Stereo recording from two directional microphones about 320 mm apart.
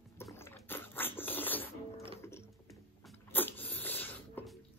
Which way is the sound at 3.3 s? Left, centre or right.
Centre.